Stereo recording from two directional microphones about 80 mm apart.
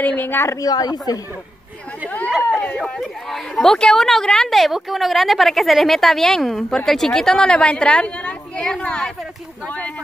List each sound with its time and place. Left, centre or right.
0.0 s a woman's voice: left
0.5 s a woman's voice: left
2.0 s a sound: centre
3.0 s a woman's voice: centre